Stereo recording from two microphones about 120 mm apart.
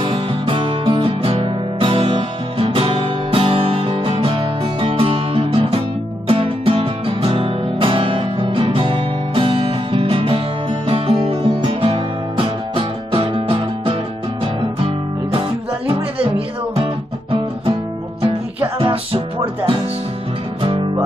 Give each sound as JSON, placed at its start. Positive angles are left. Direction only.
{"t": 0.0, "sound": "music", "side_deg": -45}
{"t": 15.9, "sound": "music", "side_deg": -50}
{"t": 18.8, "sound": "music", "side_deg": -50}